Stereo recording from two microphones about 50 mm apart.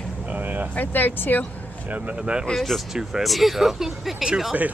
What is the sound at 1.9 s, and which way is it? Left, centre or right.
Speech, right.